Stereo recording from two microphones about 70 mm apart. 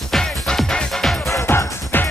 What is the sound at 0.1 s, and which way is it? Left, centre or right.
Music, centre.